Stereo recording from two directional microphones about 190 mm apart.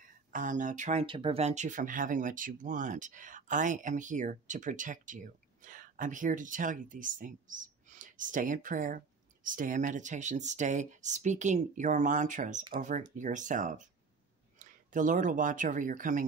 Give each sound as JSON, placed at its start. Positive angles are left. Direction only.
{"t": 0.3, "sound": "speech", "side_deg": -45}